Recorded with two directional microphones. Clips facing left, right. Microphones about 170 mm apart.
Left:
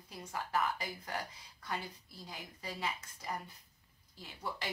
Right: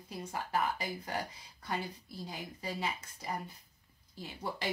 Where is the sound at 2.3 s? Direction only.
25° right (ahead or behind).